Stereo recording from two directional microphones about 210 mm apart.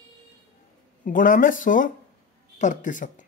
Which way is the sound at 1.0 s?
40° left (ahead or behind).